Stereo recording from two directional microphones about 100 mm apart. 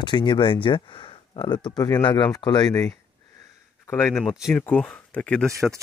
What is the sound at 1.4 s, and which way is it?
Speech, 45° left (ahead or behind).